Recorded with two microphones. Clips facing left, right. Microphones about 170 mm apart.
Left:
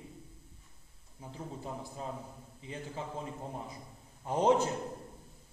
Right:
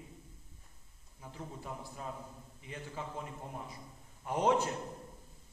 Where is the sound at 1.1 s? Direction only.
25° left (ahead or behind).